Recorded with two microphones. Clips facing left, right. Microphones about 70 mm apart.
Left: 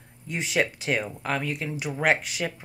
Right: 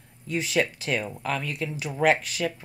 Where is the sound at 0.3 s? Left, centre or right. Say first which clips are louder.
Right 1 dB; left.